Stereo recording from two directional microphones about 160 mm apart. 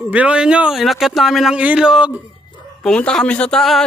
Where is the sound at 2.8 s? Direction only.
5° left (ahead or behind).